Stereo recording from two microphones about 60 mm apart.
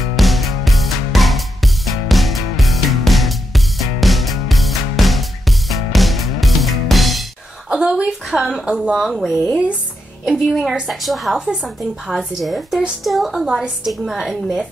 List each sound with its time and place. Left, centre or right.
0.1 s music: centre
7.7 s a sound: centre
8.6 s speech: centre
8.9 s a woman's voice: centre
11.3 s a woman's voice: centre